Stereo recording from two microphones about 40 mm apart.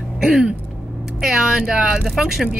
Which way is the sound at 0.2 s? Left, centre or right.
Centre.